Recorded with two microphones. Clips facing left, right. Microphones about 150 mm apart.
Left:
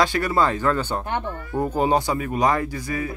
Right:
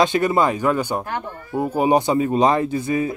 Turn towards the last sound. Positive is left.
turn(degrees=-25)  # may be behind; listen again after turning